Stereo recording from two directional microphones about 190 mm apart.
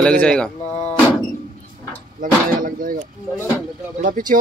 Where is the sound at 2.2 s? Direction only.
45° right (ahead or behind).